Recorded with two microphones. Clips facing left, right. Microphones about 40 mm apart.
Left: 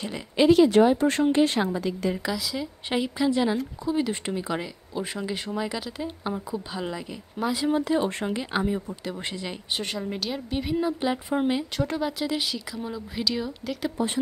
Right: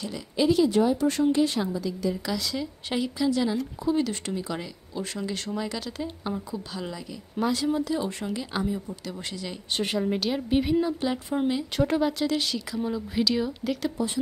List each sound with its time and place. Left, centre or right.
0.4 s a woman's voice: left
2.3 s speech: centre
3.0 s speech: left
7.4 s a woman's voice: centre
7.7 s speech: left
8.4 s speech: left
9.8 s a woman's voice: centre
11.7 s a woman's voice: centre
12.1 s a woman's voice: centre